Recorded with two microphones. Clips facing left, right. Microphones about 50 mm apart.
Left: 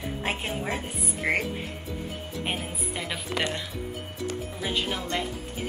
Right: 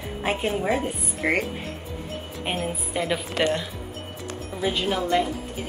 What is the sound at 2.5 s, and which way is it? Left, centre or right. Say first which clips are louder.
Speech: right 5 dB; centre.